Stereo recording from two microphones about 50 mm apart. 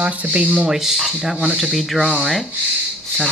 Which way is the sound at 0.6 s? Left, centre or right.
Centre.